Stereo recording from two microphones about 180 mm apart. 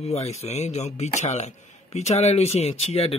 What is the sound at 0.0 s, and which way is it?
Speech, 35° left (ahead or behind).